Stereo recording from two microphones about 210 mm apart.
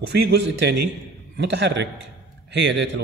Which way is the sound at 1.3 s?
55° right (ahead or behind).